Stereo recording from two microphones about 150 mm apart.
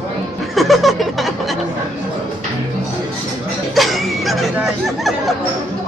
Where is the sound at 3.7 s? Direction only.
Centre (ahead or behind).